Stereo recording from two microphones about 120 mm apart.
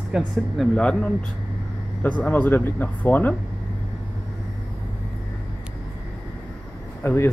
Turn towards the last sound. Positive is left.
turn(degrees=25)  # may be behind; listen again after turning